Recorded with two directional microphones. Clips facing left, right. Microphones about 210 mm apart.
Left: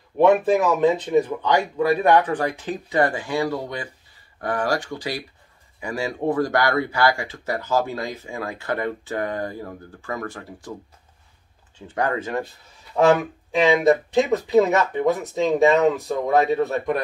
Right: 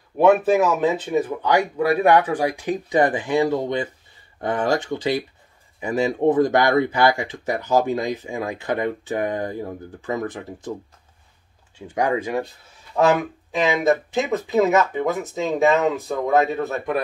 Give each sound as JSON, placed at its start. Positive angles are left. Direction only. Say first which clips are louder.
{"t": 0.2, "sound": "speech", "louder": "right 1 dB", "side_deg": -5}
{"t": 11.9, "sound": "speech", "louder": "right 2 dB", "side_deg": -10}
{"t": 13.7, "sound": "speech", "louder": "left 2 dB", "side_deg": 0}